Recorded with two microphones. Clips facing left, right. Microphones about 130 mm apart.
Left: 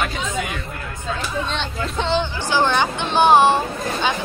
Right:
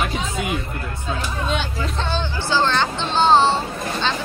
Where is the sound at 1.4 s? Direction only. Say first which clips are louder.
Right 1 dB; 5° right (ahead or behind).